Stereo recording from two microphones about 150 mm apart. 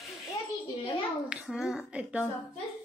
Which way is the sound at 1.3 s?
5° right (ahead or behind).